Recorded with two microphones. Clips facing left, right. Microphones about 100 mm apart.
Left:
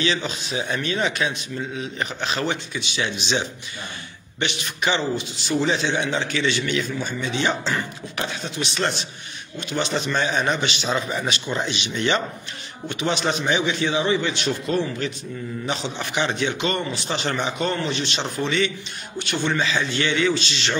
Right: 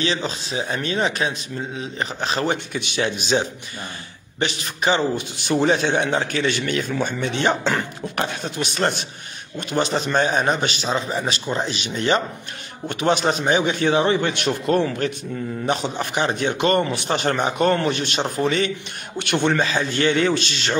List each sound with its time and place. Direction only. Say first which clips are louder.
0.0 s a man's voice: right 1 dB; 35° right (ahead or behind)
5.1 s a man's voice: right 2 dB; 55° right (ahead or behind)
12.8 s a man's voice: right 4 dB; 50° right (ahead or behind)
15.6 s a man's voice: right 5 dB; 45° right (ahead or behind)
19.1 s a man's voice: right 4 dB; 65° right (ahead or behind)